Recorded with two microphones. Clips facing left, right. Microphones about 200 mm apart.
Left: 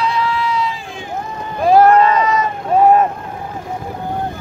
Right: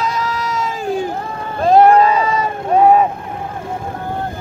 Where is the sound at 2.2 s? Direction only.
30° right (ahead or behind).